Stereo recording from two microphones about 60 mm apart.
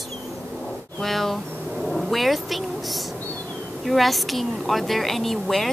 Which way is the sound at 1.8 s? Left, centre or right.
Centre.